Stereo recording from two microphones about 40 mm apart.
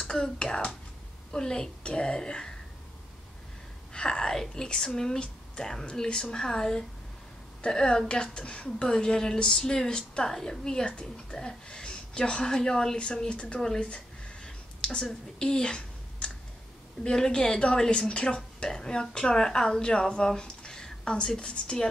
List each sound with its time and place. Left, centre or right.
0.1 s speech: centre
3.9 s speech: left
10.9 s a woman's voice: left
11.3 s speech: left
13.7 s a sound: left
17.0 s speech: centre